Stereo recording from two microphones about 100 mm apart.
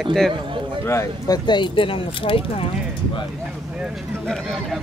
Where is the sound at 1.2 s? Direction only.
50° left (ahead or behind).